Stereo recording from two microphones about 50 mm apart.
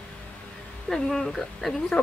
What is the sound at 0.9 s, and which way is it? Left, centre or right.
Speech, centre.